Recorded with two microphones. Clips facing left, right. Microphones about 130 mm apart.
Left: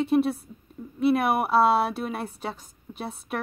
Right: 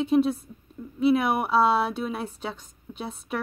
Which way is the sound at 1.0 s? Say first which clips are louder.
Even; 5° left (ahead or behind).